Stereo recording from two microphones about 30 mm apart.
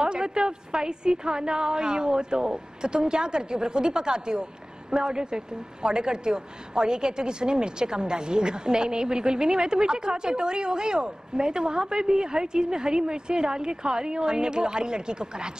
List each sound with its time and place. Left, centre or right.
0.0 s a woman's voice: right